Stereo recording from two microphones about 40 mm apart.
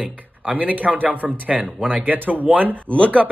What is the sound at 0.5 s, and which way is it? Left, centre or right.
A man's voice, right.